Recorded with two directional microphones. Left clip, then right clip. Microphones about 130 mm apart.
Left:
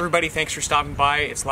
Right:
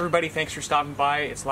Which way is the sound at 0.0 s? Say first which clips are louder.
Left 3 dB; 15° left (ahead or behind).